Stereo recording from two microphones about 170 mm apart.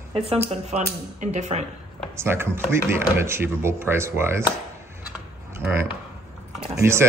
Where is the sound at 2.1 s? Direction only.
15° right (ahead or behind).